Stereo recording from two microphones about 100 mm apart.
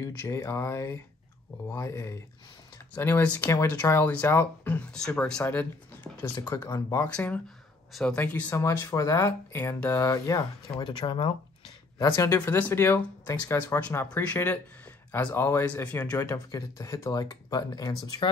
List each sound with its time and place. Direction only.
0.0 s speech: 25° left (ahead or behind)
6.5 s speech: 30° left (ahead or behind)
7.9 s speech: 10° left (ahead or behind)
8.5 s speech: 25° left (ahead or behind)
10.8 s speech: 50° left (ahead or behind)
12.0 s speech: 35° left (ahead or behind)
12.4 s speech: 20° left (ahead or behind)
13.7 s speech: 15° left (ahead or behind)
15.3 s speech: 25° left (ahead or behind); by 17.9 s 40° left (ahead or behind)